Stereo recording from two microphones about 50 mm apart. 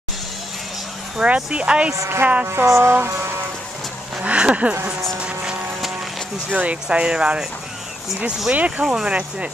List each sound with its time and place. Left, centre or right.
1.2 s speech: right
2.4 s speech: right
2.9 s music: right
4.2 s speech: right
5.2 s vehicle: centre
6.5 s speech: right
8.5 s speech: right
8.8 s speech: centre